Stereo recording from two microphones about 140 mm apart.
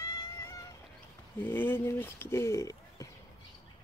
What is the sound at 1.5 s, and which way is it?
Speech, 15° left (ahead or behind).